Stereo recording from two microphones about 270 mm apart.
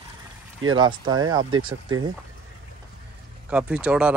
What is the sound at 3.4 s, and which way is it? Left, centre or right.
Speech, centre.